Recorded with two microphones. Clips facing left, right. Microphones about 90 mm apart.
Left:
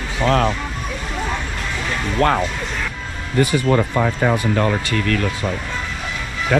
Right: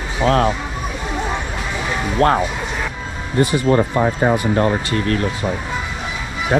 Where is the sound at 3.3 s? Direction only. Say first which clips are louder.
Right 1 dB; 25° right (ahead or behind).